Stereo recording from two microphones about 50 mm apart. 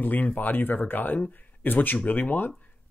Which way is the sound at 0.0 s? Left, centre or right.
Left.